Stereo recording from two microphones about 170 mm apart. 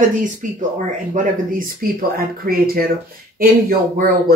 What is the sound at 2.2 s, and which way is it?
Speech, 60° right (ahead or behind).